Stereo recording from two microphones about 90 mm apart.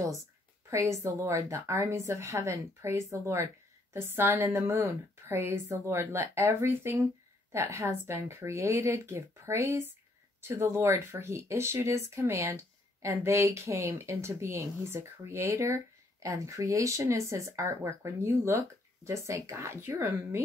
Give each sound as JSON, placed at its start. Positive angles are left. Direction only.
{"t": 0.7, "sound": "a woman's voice", "side_deg": -35}